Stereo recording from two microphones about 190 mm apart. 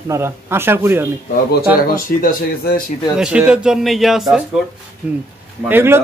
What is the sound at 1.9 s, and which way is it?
Speech, 50° left (ahead or behind).